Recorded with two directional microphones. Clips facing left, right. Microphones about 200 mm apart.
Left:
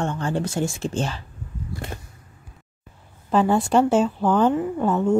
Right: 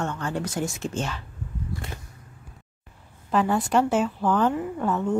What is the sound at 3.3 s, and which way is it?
Speech, 25° left (ahead or behind).